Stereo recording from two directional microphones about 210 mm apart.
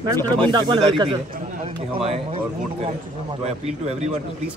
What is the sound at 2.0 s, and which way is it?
A man's voice, 30° right (ahead or behind).